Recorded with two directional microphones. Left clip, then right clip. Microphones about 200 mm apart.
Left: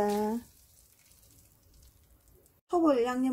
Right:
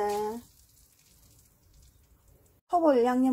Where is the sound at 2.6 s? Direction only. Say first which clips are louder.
Right 3 dB; 30° right (ahead or behind).